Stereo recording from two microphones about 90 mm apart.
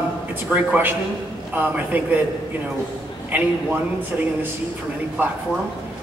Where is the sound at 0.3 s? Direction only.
20° right (ahead or behind).